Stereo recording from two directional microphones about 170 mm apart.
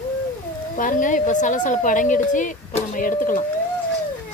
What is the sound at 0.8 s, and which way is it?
Speech, 50° left (ahead or behind).